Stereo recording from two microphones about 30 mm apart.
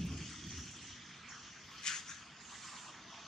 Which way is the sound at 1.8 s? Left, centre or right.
Centre.